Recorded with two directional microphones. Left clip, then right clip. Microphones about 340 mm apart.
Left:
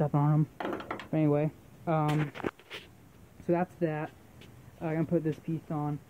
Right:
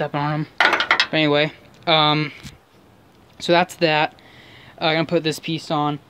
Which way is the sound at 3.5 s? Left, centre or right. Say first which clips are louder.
Right 14 dB; centre.